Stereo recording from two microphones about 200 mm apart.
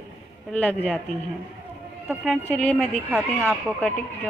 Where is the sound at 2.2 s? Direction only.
5° left (ahead or behind).